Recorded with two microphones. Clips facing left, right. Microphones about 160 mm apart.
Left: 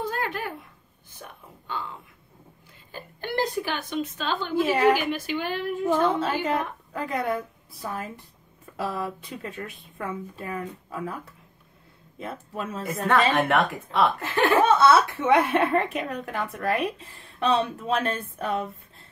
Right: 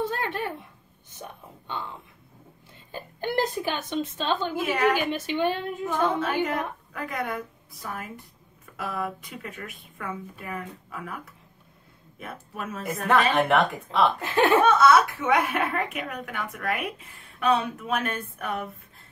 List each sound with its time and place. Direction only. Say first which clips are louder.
0.1 s a woman's voice: even; 25° right (ahead or behind)
3.2 s a woman's voice: right 1 dB; 20° right (ahead or behind)
5.9 s a woman's voice: left 2 dB; 25° left (ahead or behind)
12.2 s a woman's voice: left 3 dB; 25° left (ahead or behind)
12.8 s a woman's voice: even; centre (ahead or behind)
14.6 s a woman's voice: left 3 dB; 30° left (ahead or behind)